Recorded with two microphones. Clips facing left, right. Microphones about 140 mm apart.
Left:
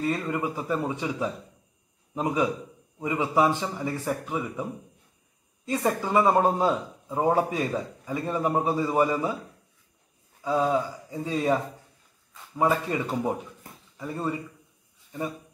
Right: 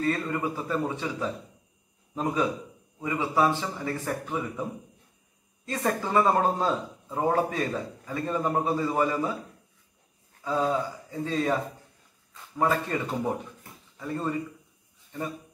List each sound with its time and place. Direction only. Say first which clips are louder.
0.0 s speech: even; 15° left (ahead or behind)
5.7 s speech: left 2 dB; 15° left (ahead or behind)
10.4 s speech: left 2 dB; 15° left (ahead or behind)
12.5 s speech: left 2 dB; 10° left (ahead or behind)